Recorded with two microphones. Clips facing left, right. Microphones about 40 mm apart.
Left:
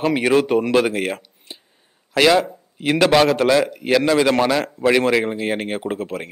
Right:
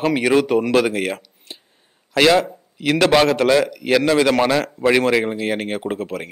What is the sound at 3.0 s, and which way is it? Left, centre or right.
A man's voice, centre.